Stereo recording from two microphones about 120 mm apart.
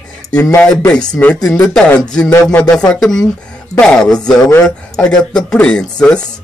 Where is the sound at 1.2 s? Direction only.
15° left (ahead or behind).